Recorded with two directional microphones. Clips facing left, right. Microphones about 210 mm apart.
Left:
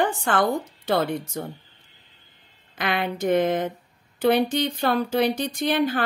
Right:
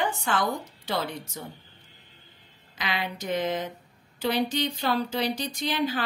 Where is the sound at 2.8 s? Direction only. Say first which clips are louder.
Left 7 dB; 55° left (ahead or behind).